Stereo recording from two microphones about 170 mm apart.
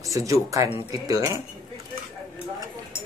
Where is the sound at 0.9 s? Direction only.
20° right (ahead or behind).